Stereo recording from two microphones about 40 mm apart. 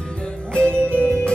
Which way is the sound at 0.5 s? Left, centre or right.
Left.